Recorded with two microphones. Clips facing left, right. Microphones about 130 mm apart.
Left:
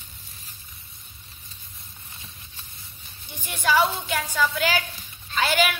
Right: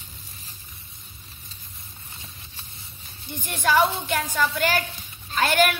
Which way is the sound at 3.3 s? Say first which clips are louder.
Right 1 dB; centre (ahead or behind).